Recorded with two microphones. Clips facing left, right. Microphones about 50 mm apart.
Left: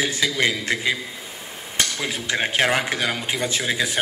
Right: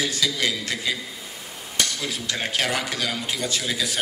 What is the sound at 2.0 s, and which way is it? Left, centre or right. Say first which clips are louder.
A man's voice: left 4 dB; left.